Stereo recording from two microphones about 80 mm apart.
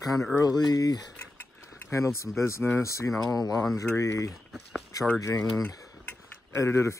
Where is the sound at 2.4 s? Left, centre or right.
Left.